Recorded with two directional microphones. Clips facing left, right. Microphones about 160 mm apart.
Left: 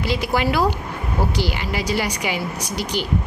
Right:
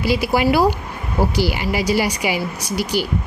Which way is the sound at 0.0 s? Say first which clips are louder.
Right 4 dB; 10° right (ahead or behind).